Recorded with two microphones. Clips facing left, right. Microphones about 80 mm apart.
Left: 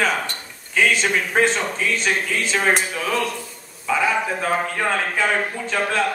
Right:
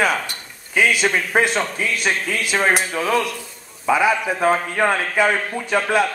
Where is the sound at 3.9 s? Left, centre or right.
Centre.